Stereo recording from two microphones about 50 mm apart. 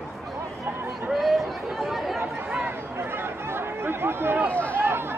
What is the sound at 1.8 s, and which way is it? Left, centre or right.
Chatter, centre.